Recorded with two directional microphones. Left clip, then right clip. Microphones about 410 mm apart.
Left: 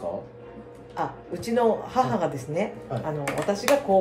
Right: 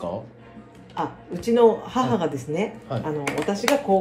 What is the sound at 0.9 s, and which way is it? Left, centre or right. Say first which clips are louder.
Speech: right 1 dB; centre.